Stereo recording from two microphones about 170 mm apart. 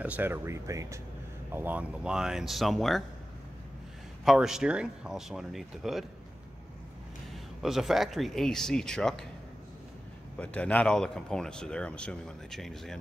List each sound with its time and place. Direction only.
0.0 s speech: 10° right (ahead or behind)
4.2 s speech: centre (ahead or behind)
7.6 s speech: centre (ahead or behind)
10.4 s speech: 5° left (ahead or behind)